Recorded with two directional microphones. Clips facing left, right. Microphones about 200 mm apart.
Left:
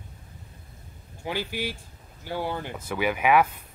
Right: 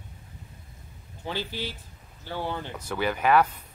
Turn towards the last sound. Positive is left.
turn(degrees=10)  # may be behind; listen again after turning